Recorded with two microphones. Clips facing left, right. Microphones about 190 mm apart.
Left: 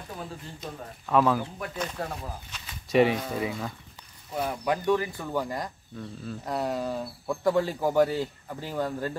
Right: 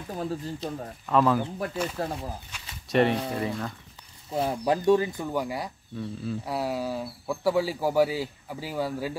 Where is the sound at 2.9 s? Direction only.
5° left (ahead or behind).